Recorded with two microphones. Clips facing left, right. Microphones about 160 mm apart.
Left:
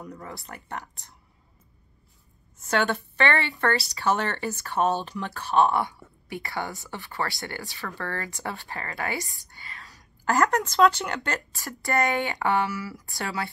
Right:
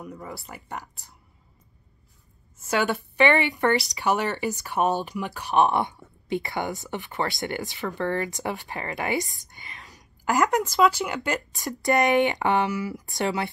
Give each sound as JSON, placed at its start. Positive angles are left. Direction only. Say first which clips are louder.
{"t": 0.0, "sound": "speech", "louder": "right 2 dB", "side_deg": -10}
{"t": 2.6, "sound": "a woman's voice", "louder": "even", "side_deg": -10}